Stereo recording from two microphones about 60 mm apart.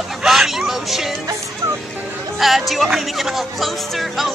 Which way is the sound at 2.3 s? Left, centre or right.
Centre.